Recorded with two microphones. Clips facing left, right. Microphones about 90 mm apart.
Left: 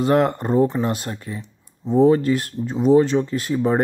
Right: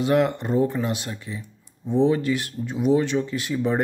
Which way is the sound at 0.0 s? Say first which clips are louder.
Left 3 dB; 40° left (ahead or behind).